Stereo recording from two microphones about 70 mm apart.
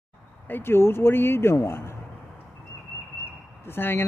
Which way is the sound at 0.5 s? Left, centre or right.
Left.